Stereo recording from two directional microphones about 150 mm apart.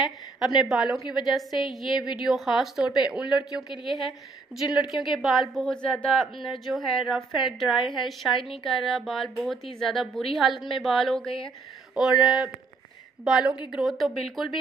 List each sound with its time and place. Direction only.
0.4 s a woman's voice: 5° right (ahead or behind)